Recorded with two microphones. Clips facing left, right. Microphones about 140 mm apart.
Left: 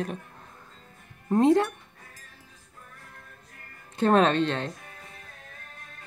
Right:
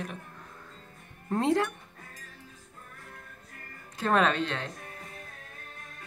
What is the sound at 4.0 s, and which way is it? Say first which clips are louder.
Speech: left 5 dB; 30° left (ahead or behind).